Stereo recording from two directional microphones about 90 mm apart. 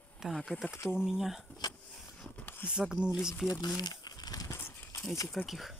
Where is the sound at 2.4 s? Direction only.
25° left (ahead or behind).